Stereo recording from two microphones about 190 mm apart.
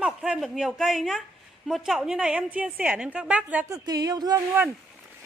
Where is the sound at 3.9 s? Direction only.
20° right (ahead or behind).